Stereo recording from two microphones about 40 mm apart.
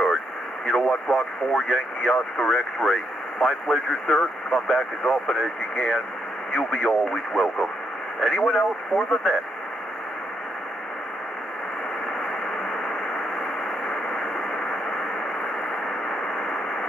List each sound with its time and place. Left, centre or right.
0.7 s speech: centre
6.9 s speech: centre
8.2 s speech: centre
12.2 s radio: centre